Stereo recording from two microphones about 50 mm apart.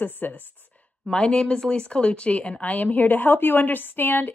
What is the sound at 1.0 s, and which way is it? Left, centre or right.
Speech, centre.